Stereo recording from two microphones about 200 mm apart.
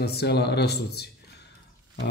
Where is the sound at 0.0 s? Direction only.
55° left (ahead or behind).